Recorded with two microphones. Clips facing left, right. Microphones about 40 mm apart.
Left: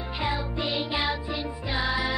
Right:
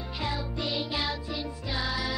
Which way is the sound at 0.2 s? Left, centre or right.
Left.